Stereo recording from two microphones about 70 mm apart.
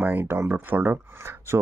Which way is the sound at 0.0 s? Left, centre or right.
Right.